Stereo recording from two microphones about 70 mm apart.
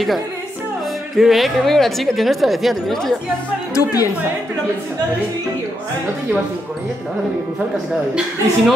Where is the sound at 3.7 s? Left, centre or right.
Left.